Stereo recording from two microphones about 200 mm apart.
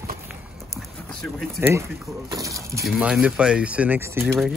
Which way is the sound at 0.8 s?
Centre (ahead or behind).